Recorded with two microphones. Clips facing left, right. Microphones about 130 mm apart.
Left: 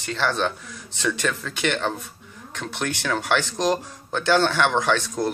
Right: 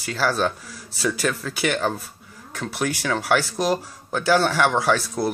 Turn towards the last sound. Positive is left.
turn(degrees=-5)  # may be behind; listen again after turning